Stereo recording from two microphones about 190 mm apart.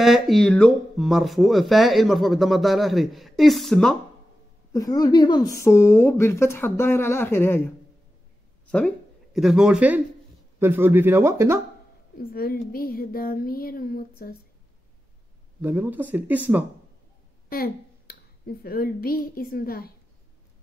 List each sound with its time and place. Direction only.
0.0 s speech: centre (ahead or behind)
4.7 s speech: 20° left (ahead or behind)
8.7 s speech: 5° left (ahead or behind); by 11.6 s 15° right (ahead or behind)
12.2 s speech: 50° left (ahead or behind)
15.6 s speech: 10° right (ahead or behind)
17.5 s speech: 50° left (ahead or behind)